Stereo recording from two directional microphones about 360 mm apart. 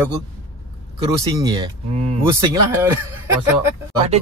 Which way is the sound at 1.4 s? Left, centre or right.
Centre.